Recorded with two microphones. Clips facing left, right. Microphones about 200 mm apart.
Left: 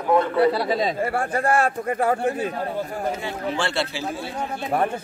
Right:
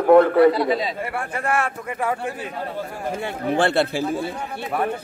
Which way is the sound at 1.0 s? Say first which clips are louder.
Left 3 dB; 30° left (ahead or behind).